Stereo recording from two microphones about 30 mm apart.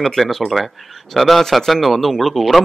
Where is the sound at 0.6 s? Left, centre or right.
Centre.